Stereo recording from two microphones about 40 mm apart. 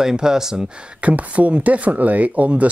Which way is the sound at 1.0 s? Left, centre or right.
Right.